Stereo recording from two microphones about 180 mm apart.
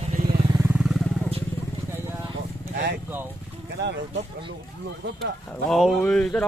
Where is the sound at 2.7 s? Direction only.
55° right (ahead or behind).